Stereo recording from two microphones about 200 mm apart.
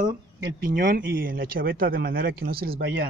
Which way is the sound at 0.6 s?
45° right (ahead or behind).